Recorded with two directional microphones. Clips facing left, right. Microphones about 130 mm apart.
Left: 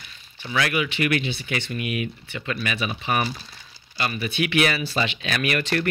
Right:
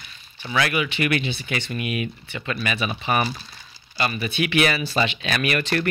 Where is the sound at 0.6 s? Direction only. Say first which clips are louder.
Right 1 dB; 30° right (ahead or behind).